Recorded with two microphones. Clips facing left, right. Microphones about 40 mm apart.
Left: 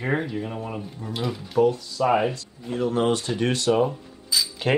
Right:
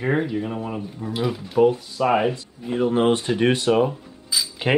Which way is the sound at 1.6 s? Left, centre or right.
Right.